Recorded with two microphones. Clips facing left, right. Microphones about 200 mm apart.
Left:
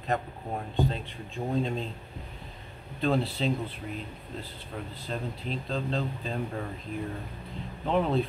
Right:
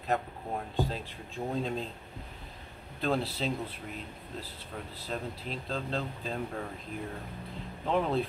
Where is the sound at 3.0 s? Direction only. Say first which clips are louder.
Left 3 dB; centre (ahead or behind).